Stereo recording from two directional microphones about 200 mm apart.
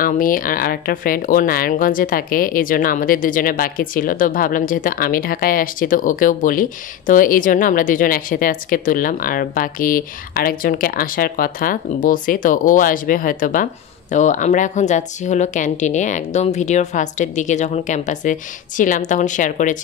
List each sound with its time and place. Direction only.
0.0 s speech: 45° left (ahead or behind)